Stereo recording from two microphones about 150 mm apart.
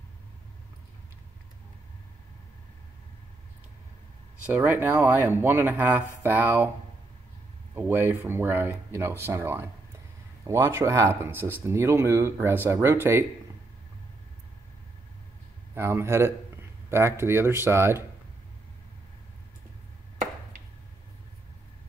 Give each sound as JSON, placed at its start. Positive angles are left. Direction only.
{"t": 4.5, "sound": "speech", "side_deg": -10}
{"t": 7.7, "sound": "speech", "side_deg": -15}
{"t": 15.7, "sound": "speech", "side_deg": -15}